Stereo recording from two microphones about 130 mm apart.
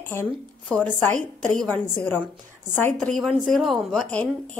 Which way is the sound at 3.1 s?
Centre (ahead or behind).